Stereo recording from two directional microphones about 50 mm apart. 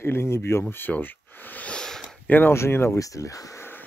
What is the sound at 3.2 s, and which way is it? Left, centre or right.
Speech, left.